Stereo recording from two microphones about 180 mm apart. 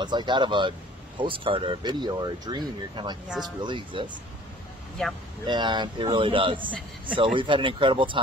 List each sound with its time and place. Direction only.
0.0 s speech: 25° right (ahead or behind)
5.5 s speech: 25° right (ahead or behind)